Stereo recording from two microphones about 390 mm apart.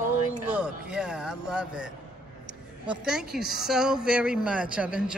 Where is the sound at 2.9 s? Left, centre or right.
Centre.